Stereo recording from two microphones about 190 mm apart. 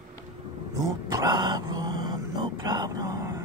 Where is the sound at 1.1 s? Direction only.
20° right (ahead or behind).